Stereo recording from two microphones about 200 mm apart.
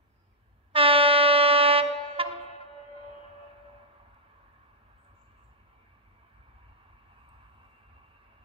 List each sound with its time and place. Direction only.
0.7 s train: 25° right (ahead or behind)